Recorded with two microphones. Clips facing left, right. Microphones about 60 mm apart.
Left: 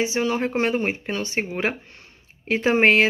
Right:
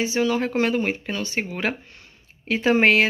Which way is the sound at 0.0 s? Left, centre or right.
Left.